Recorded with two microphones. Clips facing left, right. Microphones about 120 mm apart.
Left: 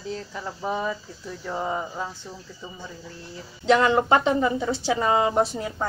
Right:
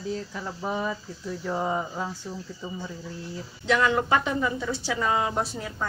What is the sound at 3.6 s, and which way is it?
Speech, 30° left (ahead or behind).